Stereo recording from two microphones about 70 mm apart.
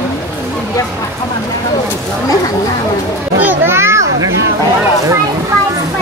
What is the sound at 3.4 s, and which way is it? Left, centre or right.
Children playing, right.